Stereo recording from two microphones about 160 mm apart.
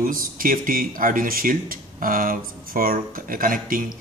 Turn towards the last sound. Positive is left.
turn(degrees=-60)  # may be behind; listen again after turning